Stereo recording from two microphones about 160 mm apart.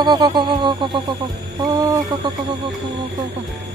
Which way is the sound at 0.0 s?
30° right (ahead or behind).